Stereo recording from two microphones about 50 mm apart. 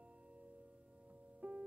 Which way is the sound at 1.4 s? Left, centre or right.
Right.